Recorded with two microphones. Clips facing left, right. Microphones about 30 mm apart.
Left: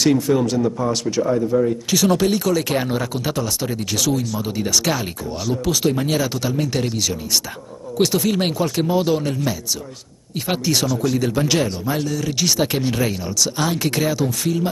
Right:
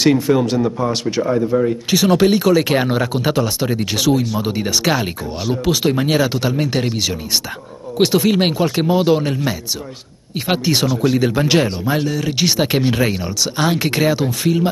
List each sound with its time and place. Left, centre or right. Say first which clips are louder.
0.0 s speech: right 3 dB; right